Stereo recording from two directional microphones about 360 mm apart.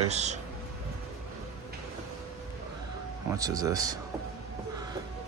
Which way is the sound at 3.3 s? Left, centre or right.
Centre.